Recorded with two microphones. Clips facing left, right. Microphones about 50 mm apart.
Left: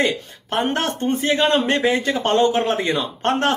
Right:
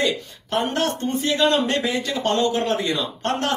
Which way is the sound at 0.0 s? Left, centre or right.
Left.